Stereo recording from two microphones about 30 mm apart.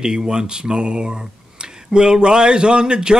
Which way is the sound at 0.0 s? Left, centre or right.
Right.